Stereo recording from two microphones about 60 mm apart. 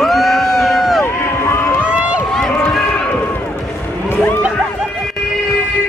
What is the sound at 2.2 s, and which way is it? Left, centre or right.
Run, centre.